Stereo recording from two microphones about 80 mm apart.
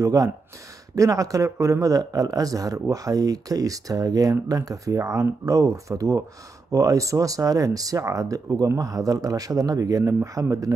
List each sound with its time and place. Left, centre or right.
0.0 s speech: right